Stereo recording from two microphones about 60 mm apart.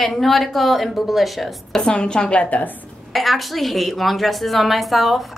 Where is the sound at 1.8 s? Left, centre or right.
Centre.